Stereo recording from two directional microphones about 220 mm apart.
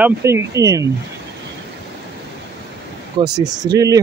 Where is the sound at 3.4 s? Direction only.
15° right (ahead or behind).